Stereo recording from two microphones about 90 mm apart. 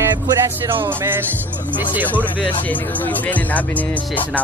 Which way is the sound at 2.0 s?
20° left (ahead or behind).